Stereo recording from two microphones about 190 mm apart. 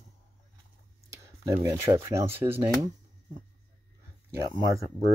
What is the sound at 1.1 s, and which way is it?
Speech, 15° right (ahead or behind).